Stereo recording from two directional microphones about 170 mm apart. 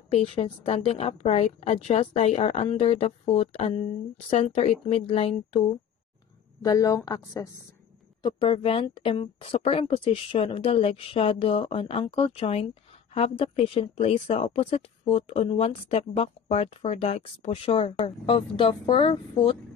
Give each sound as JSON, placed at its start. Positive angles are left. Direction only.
{"t": 0.1, "sound": "speech", "side_deg": 35}
{"t": 6.6, "sound": "a woman's voice", "side_deg": 20}